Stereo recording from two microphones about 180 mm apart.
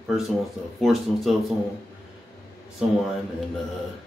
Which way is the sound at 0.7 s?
Centre (ahead or behind).